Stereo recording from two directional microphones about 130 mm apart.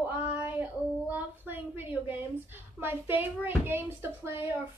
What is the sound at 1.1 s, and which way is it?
A woman's voice, 15° right (ahead or behind).